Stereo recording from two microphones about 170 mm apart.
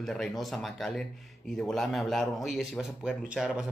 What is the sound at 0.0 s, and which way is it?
Speech, centre (ahead or behind).